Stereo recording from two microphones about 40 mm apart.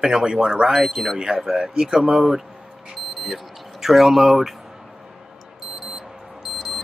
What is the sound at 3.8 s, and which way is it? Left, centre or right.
Speech, centre.